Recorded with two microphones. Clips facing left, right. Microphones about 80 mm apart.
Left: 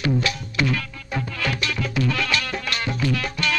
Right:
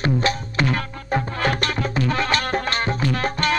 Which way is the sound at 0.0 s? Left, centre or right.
Right.